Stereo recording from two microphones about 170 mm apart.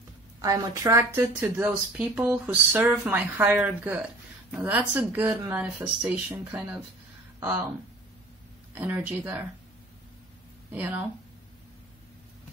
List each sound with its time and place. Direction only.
0.4 s speech: 20° right (ahead or behind)
8.7 s speech: 10° right (ahead or behind)
10.7 s speech: 10° right (ahead or behind)